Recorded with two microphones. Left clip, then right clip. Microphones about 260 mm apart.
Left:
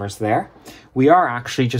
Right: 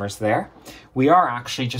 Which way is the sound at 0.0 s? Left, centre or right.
Left.